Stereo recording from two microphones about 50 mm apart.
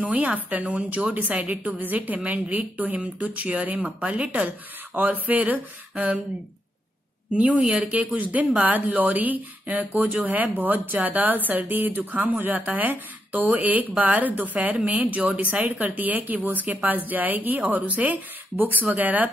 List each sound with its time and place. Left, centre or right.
0.0 s a woman's voice: right
7.3 s speech: right